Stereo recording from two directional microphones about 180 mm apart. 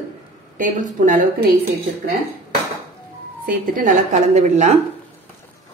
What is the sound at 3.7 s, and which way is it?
Speech, 45° right (ahead or behind).